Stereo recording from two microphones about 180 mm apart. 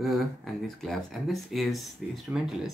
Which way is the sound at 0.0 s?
Centre (ahead or behind).